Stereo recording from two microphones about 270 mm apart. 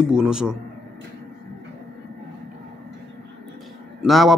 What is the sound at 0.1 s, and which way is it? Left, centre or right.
Speech, centre.